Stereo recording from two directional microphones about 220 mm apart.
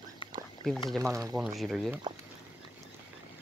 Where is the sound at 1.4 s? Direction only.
Centre (ahead or behind).